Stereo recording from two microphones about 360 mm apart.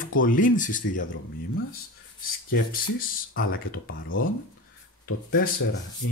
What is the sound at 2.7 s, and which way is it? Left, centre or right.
Speech, left.